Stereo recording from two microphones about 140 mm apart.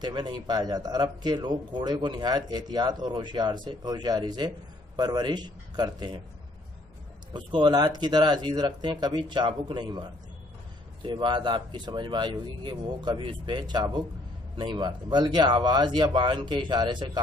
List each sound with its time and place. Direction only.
0.0 s a man's voice: 30° right (ahead or behind)
7.3 s speech: 30° right (ahead or behind)